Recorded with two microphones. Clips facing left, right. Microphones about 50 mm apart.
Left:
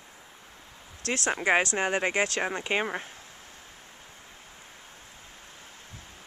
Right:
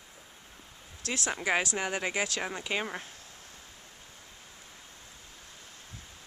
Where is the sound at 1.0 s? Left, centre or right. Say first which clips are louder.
Left 5 dB; left.